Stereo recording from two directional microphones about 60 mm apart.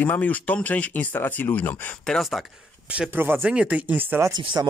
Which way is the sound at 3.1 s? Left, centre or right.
Right.